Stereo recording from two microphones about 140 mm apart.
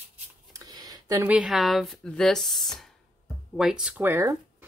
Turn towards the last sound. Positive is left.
turn(degrees=-20)  # may be behind; listen again after turning